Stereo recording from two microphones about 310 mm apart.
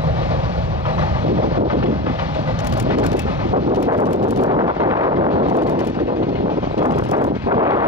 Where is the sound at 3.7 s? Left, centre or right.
Centre.